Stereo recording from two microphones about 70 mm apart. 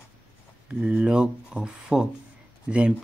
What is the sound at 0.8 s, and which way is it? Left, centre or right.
Speech, centre.